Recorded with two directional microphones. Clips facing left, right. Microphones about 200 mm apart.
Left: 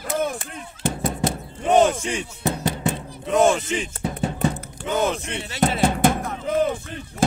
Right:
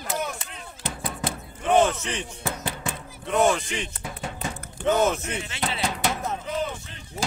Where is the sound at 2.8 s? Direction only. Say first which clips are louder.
Left 8 dB; 25° left (ahead or behind).